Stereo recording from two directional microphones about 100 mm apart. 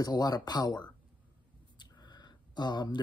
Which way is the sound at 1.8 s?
45° left (ahead or behind).